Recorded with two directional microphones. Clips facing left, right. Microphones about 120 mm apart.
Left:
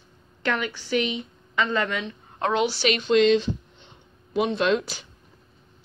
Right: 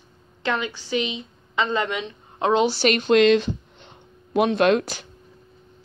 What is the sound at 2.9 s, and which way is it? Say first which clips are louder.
Speech: right 2 dB; 55° right (ahead or behind).